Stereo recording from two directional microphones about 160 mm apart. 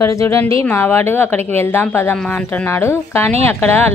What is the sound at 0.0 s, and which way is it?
A woman's voice, 20° left (ahead or behind).